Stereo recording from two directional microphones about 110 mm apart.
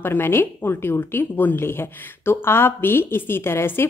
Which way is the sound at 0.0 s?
20° left (ahead or behind).